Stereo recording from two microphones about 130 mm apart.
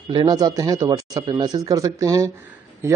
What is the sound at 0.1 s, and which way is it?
Speech, 35° right (ahead or behind).